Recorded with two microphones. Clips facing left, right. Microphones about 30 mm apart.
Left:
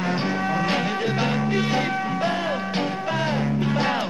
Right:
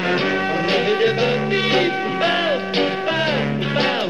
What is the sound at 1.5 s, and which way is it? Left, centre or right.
Music, right.